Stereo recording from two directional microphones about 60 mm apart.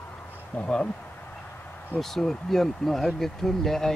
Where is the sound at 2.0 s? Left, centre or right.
Centre.